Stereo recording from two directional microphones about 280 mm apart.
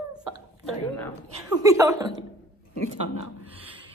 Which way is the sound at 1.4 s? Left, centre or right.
Centre.